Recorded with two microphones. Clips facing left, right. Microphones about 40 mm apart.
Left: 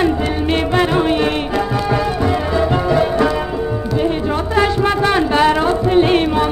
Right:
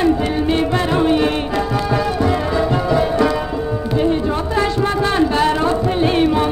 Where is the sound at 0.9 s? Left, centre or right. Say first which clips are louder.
Even; centre.